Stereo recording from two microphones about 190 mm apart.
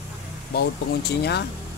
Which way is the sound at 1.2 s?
60° left (ahead or behind).